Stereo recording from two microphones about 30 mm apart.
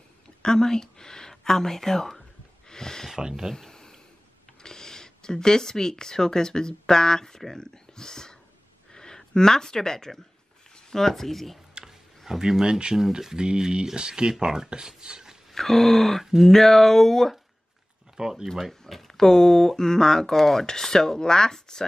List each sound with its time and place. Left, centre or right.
0.4 s speech: left
2.7 s a sound: centre
3.2 s speech: right
3.6 s a sound: centre
4.6 s speech: centre
12.3 s speech: centre
14.4 s speech: centre
15.5 s speech: centre
18.1 s speech: centre
18.7 s speech: centre